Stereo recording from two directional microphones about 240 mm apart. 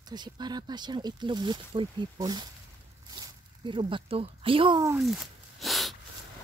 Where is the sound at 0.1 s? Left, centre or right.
Centre.